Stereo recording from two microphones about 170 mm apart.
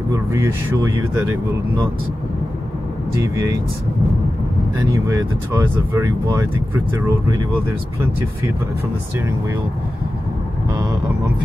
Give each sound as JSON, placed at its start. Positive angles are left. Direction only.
{"t": 0.1, "sound": "speech", "side_deg": -20}
{"t": 5.0, "sound": "speech", "side_deg": -20}